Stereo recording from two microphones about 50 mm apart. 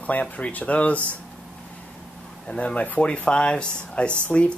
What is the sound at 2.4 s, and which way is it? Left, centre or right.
Speech, left.